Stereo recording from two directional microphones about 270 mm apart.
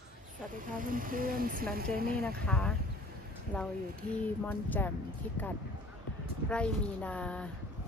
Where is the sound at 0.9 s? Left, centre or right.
Right.